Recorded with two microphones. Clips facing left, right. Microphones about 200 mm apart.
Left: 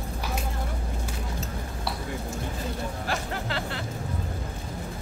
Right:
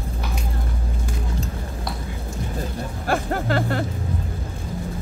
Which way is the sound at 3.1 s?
50° right (ahead or behind).